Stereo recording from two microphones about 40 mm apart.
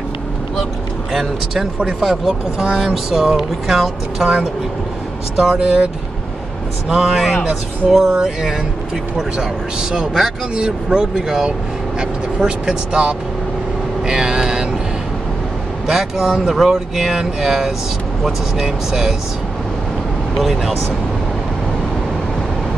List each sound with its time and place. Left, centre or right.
1.1 s speech: centre
5.3 s speech: centre
5.6 s speech: right
7.0 s speech: centre
14.0 s vehicle: centre
15.9 s speech: centre
20.3 s speech: centre